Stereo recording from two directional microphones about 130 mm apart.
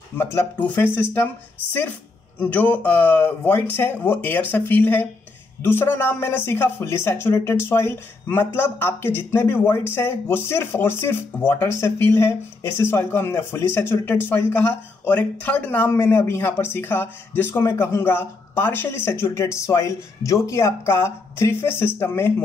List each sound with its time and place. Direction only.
0.2 s speech: 15° left (ahead or behind)